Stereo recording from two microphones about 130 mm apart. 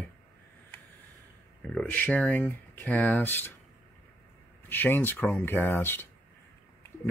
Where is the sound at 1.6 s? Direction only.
5° left (ahead or behind).